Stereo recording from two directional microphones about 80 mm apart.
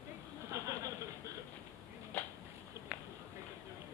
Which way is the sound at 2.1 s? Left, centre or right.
Left.